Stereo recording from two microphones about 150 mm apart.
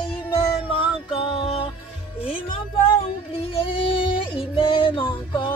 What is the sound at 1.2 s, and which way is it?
Music, 40° left (ahead or behind).